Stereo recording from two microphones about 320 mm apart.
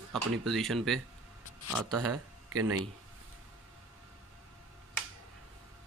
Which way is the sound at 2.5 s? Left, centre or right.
Right.